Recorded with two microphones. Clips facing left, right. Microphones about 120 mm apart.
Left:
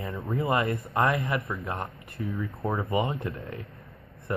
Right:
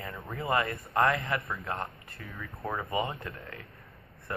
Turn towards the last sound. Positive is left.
turn(degrees=20)  # may be behind; listen again after turning